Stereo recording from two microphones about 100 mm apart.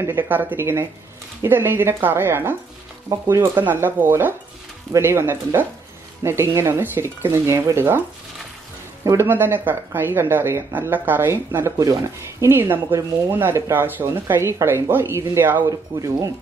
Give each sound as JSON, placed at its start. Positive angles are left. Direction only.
{"t": 0.0, "sound": "speech", "side_deg": -20}
{"t": 9.0, "sound": "speech", "side_deg": -25}
{"t": 11.8, "sound": "speech", "side_deg": -35}
{"t": 12.4, "sound": "speech", "side_deg": -20}